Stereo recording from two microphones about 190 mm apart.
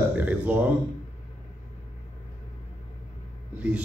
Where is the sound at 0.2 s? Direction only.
10° right (ahead or behind).